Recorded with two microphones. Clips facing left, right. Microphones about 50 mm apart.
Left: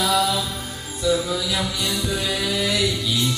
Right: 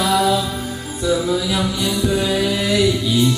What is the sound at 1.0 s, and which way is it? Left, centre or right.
Music, centre.